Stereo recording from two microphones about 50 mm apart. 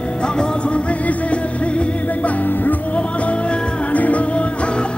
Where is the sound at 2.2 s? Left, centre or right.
Left.